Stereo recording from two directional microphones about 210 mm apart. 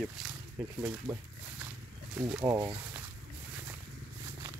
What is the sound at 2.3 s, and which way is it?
Speech, 10° right (ahead or behind).